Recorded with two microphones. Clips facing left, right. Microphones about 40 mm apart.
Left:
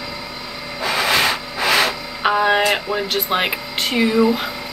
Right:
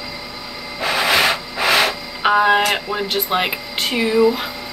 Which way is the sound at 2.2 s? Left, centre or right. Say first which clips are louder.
Right 2 dB; centre.